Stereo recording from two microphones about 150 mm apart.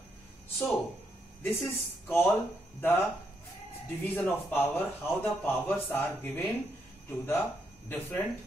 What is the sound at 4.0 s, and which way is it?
A man's voice, 15° left (ahead or behind).